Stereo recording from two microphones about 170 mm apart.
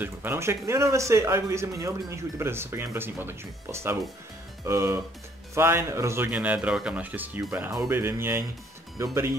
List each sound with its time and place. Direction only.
0.0 s speech: 10° right (ahead or behind)